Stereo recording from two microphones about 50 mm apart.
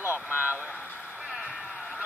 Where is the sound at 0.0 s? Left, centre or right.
Left.